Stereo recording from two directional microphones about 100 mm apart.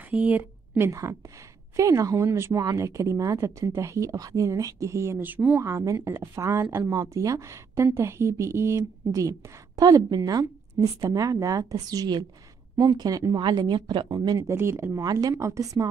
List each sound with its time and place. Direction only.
0.1 s a woman's voice: 15° right (ahead or behind)
0.8 s a woman's voice: 30° right (ahead or behind)
5.2 s speech: 15° right (ahead or behind)
5.6 s a woman's voice: 30° right (ahead or behind); by 14.0 s 50° right (ahead or behind)
14.0 s speech: 40° right (ahead or behind)
14.5 s a woman's voice: 25° right (ahead or behind)
15.0 s speech: 40° right (ahead or behind)